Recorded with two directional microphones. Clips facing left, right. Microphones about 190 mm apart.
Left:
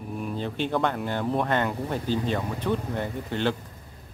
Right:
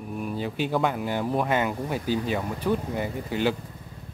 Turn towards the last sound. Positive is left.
turn(degrees=-5)  # may be behind; listen again after turning